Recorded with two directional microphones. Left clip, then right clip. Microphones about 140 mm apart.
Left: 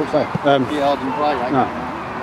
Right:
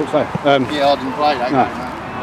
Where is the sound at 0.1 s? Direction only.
Centre (ahead or behind).